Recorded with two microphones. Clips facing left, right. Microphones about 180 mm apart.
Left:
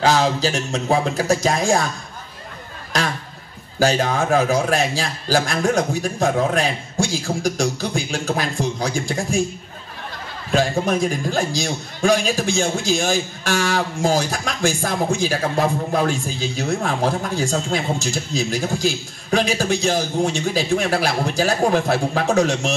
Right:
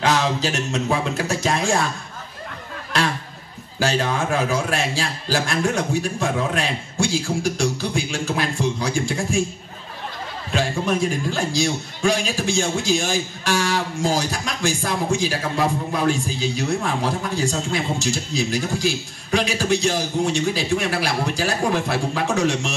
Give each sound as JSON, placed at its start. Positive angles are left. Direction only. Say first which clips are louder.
{"t": 0.0, "sound": "a man's voice", "louder": "left 3 dB", "side_deg": 35}
{"t": 3.8, "sound": "a man's voice", "louder": "left 3 dB", "side_deg": 45}
{"t": 10.5, "sound": "a man's voice", "louder": "left 3 dB", "side_deg": 45}